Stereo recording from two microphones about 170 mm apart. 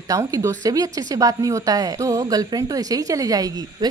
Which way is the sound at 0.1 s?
20° right (ahead or behind).